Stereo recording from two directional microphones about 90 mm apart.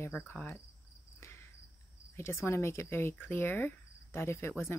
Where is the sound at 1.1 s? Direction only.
30° left (ahead or behind).